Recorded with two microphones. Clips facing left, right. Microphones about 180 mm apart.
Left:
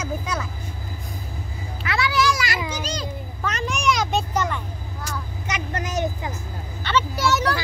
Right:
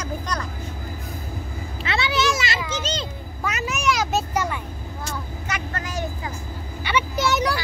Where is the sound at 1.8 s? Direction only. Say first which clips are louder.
Left 1 dB; 25° right (ahead or behind).